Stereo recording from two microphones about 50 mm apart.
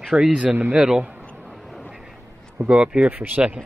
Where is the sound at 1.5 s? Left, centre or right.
Centre.